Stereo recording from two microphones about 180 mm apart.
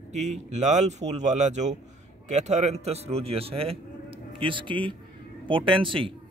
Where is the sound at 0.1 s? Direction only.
40° right (ahead or behind).